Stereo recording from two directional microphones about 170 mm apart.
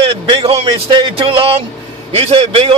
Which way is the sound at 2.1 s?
35° right (ahead or behind).